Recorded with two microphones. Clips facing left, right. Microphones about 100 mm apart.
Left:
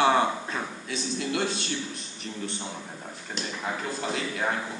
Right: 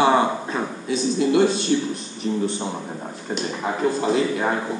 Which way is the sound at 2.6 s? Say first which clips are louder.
Right 9 dB; 35° right (ahead or behind).